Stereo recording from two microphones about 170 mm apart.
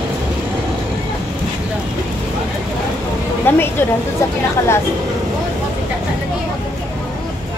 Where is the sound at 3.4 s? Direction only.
15° left (ahead or behind).